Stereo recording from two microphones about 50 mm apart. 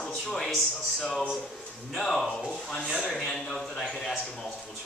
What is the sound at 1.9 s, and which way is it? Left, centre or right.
Speech, centre.